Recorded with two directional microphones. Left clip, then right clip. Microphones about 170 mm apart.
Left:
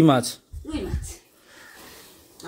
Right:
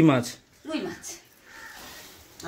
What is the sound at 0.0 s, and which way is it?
Speech, 15° left (ahead or behind).